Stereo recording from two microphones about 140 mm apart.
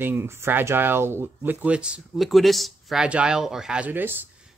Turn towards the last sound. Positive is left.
turn(degrees=-15)  # may be behind; listen again after turning